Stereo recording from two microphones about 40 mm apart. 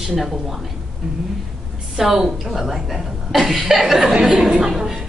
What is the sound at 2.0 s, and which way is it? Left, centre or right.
Speech, centre.